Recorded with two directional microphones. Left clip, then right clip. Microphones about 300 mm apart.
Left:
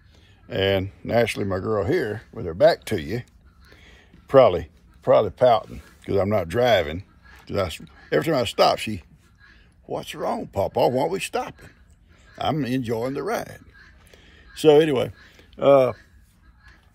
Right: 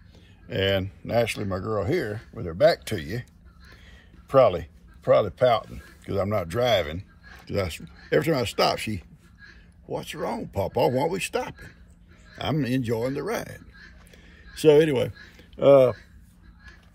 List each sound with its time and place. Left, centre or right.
0.5 s speech: centre
7.4 s speech: centre
14.1 s a sound: centre